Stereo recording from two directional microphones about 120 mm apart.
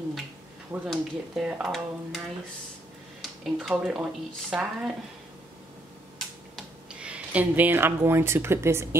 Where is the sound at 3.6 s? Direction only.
5° right (ahead or behind).